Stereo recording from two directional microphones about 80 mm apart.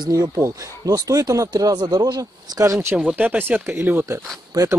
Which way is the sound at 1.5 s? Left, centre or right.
Right.